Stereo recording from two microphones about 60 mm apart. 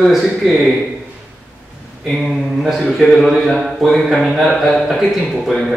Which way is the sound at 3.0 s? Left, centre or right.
Centre.